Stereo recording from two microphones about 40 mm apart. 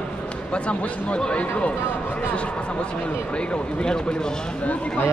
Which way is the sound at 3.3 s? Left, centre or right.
Left.